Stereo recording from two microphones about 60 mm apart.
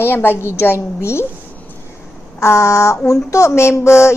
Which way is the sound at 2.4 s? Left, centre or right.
Left.